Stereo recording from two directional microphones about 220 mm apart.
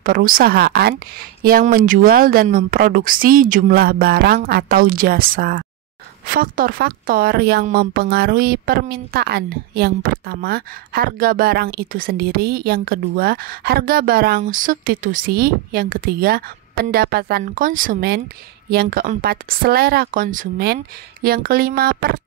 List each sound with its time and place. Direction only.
0.0 s a woman's voice: 40° right (ahead or behind)